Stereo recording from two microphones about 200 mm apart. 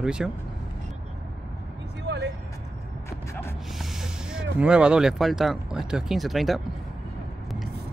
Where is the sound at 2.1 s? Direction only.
60° right (ahead or behind).